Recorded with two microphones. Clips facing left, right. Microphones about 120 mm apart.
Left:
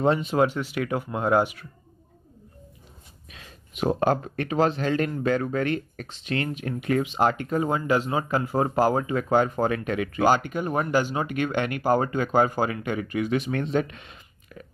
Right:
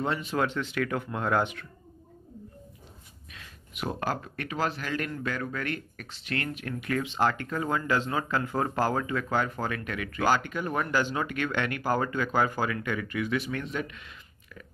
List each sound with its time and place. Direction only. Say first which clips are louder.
0.0 s speech: left 7 dB; 20° left (ahead or behind)
3.4 s speech: left 9 dB; 25° left (ahead or behind)